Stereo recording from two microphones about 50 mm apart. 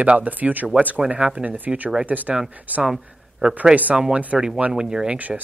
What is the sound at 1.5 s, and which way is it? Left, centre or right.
Speech, right.